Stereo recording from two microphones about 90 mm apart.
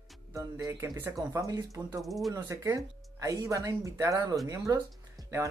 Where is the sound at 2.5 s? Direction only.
35° right (ahead or behind).